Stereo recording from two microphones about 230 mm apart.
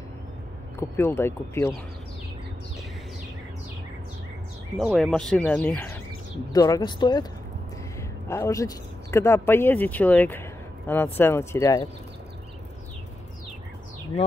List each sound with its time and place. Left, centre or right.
0.7 s speech: centre
4.7 s speech: centre
8.3 s speech: centre